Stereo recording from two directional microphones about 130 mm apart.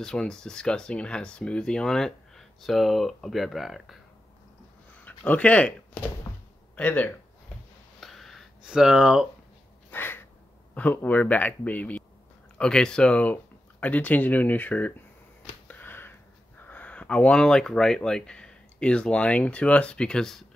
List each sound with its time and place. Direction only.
0.0 s speech: 5° left (ahead or behind)
5.0 s speech: 10° left (ahead or behind)
6.8 s speech: 10° left (ahead or behind)
8.0 s a sound: centre (ahead or behind)
9.8 s crow: 15° left (ahead or behind)
10.7 s speech: 15° left (ahead or behind)
15.7 s a sound: 15° left (ahead or behind)
16.6 s speech: 10° left (ahead or behind)